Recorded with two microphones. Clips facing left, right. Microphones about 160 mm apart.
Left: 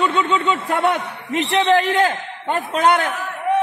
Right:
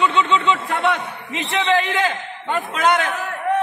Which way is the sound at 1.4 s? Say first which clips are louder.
Left 3 dB; 55° left (ahead or behind).